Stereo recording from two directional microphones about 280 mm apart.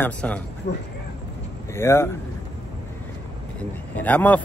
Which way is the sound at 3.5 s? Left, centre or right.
Centre.